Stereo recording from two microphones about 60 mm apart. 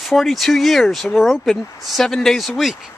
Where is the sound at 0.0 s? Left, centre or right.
Centre.